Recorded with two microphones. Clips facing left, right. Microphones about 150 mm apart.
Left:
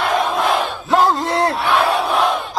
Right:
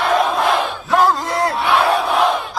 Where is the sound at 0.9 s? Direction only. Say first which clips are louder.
Left 1 dB; 25° left (ahead or behind).